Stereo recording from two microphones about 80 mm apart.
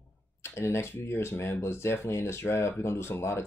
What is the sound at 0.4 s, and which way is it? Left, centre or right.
Speech, left.